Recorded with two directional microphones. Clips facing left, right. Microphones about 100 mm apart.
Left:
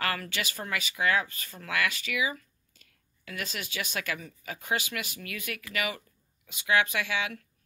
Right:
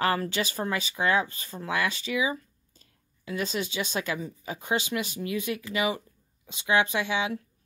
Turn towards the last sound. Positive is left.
turn(degrees=-25)  # may be behind; listen again after turning